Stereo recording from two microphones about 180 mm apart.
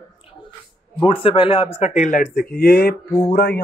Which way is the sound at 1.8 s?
40° left (ahead or behind).